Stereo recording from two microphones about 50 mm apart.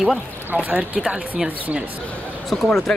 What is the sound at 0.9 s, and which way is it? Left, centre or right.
Speech, centre.